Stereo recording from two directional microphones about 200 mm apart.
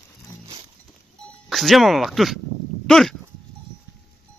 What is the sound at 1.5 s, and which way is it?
Speech, centre (ahead or behind).